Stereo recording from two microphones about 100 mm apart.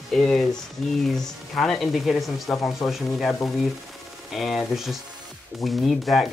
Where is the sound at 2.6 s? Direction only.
30° left (ahead or behind).